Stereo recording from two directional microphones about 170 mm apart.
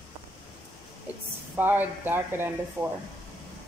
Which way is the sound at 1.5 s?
10° right (ahead or behind).